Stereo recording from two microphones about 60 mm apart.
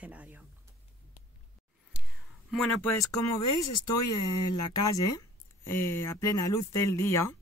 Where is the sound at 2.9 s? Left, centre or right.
Left.